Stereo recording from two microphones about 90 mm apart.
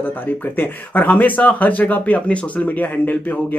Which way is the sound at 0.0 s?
20° left (ahead or behind).